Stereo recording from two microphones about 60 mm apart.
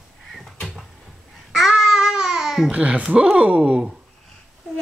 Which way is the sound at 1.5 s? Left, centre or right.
Centre.